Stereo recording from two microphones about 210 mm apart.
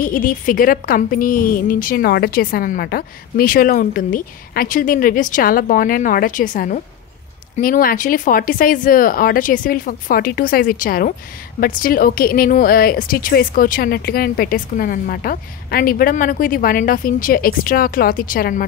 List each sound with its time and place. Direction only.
0.0 s a woman's voice: 40° left (ahead or behind)